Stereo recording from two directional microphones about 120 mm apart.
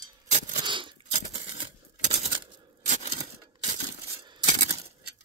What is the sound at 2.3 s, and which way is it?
Coin, 40° right (ahead or behind).